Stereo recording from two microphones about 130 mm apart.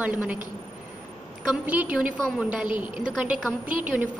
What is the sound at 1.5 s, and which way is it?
A woman's voice, 10° right (ahead or behind).